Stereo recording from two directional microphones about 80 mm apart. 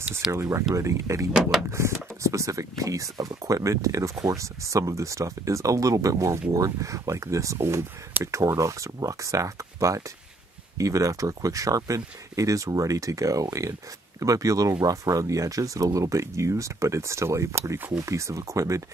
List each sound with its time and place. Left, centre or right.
0.3 s speech: right
1.3 s speech: centre
1.7 s speech: right